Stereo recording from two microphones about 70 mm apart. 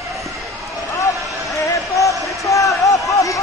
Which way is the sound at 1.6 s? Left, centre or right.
Left.